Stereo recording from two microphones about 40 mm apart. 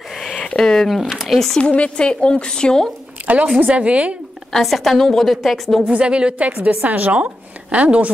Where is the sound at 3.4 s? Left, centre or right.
Right.